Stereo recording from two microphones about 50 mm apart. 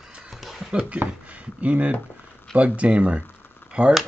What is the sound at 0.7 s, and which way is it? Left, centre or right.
Speech, right.